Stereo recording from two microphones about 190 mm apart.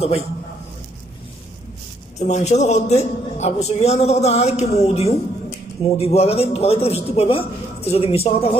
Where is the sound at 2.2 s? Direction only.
35° left (ahead or behind).